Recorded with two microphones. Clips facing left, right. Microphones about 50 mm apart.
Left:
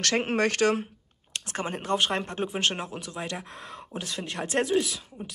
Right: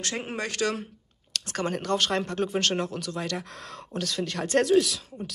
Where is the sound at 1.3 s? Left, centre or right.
Left.